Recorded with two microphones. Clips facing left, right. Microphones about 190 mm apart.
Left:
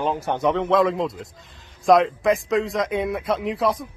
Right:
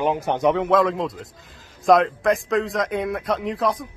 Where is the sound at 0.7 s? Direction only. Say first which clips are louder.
Even; centre (ahead or behind).